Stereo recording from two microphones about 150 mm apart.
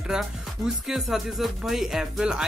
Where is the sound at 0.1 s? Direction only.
5° right (ahead or behind).